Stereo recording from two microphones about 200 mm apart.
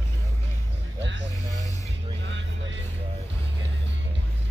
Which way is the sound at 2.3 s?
65° right (ahead or behind).